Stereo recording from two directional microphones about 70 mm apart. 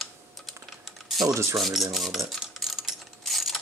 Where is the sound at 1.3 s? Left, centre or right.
Right.